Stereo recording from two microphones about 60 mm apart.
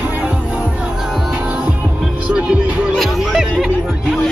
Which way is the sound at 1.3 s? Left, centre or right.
Centre.